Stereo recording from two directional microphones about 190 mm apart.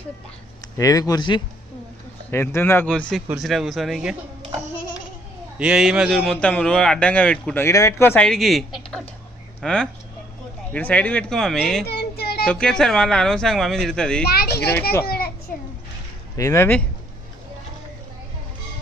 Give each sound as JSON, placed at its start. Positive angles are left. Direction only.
{"t": 0.7, "sound": "speech", "side_deg": 20}
{"t": 2.3, "sound": "a man's voice", "side_deg": 10}
{"t": 5.6, "sound": "a man's voice", "side_deg": -5}
{"t": 11.8, "sound": "child singing", "side_deg": 55}
{"t": 12.4, "sound": "a man's voice", "side_deg": 5}
{"t": 14.2, "sound": "a child's voice", "side_deg": 55}
{"t": 16.3, "sound": "speech", "side_deg": 15}